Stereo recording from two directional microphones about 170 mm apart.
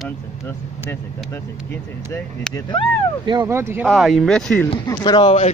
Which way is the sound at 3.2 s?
25° right (ahead or behind).